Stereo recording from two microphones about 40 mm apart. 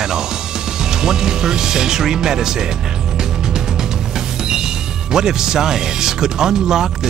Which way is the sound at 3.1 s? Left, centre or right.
Centre.